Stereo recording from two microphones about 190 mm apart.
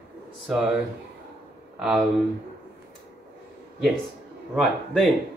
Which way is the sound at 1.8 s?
Centre (ahead or behind).